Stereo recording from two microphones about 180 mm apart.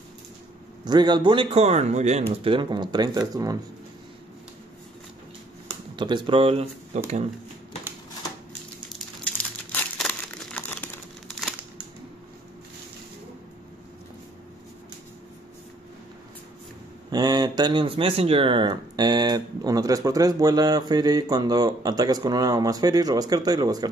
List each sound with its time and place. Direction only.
0.8 s speech: 25° right (ahead or behind)
5.9 s speech: 25° right (ahead or behind)
8.8 s crumpling: 5° left (ahead or behind)
17.1 s speech: 20° right (ahead or behind)